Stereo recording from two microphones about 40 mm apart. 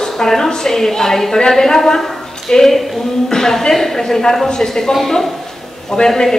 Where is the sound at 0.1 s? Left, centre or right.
Centre.